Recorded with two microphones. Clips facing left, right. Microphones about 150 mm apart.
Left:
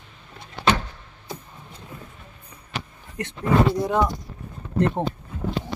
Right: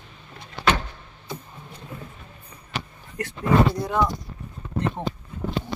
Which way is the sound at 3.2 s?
20° left (ahead or behind).